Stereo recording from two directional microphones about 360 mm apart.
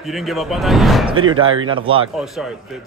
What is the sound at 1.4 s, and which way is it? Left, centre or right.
Speech, right.